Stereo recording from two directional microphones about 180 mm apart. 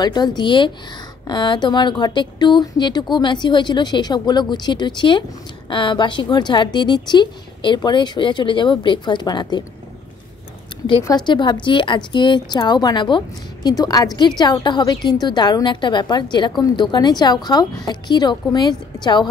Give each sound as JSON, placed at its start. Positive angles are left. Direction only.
{"t": 0.0, "sound": "a woman's voice", "side_deg": 20}
{"t": 11.1, "sound": "a woman's voice", "side_deg": 25}